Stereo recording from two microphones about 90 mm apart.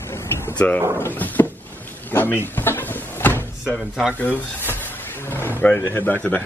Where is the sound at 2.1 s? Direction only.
20° left (ahead or behind).